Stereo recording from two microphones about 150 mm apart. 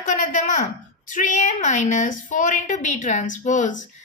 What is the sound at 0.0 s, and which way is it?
A woman's voice, 55° left (ahead or behind).